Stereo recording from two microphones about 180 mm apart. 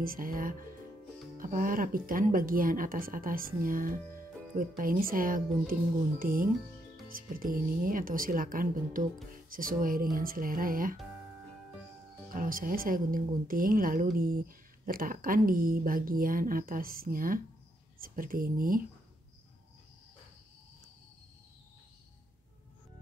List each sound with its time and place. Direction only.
0.0 s speech: 50° right (ahead or behind)
12.3 s speech: 50° right (ahead or behind)